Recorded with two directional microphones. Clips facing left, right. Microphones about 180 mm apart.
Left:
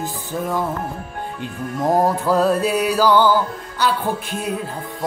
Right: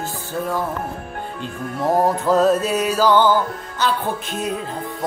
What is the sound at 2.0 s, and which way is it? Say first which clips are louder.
Music: right 3 dB; 10° left (ahead or behind).